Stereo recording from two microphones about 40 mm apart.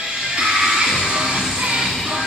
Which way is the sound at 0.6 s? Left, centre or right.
Centre.